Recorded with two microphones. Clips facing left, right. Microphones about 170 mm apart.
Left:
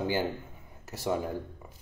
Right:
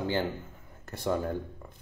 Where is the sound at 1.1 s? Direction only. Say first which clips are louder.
Right 1 dB; 10° left (ahead or behind).